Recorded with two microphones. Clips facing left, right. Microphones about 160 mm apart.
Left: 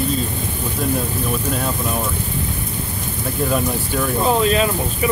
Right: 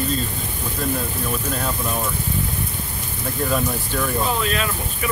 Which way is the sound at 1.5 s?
5° left (ahead or behind).